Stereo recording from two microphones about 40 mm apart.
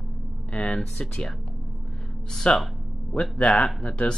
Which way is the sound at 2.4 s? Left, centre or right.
Left.